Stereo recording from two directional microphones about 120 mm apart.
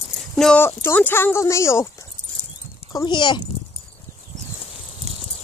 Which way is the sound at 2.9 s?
40° left (ahead or behind).